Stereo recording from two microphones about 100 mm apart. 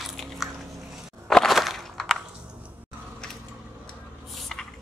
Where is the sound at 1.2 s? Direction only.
Centre (ahead or behind).